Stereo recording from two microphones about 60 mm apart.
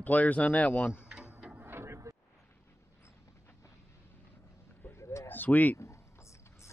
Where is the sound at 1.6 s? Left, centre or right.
Right.